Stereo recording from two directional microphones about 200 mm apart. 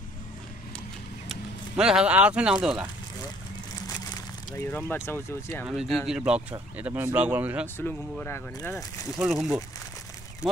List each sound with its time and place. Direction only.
1.3 s speech: 5° right (ahead or behind)
3.8 s a sound: 20° left (ahead or behind)
4.6 s speech: 10° left (ahead or behind)
5.7 s speech: 5° right (ahead or behind)
7.6 s speech: 10° left (ahead or behind)
8.7 s speech: centre (ahead or behind)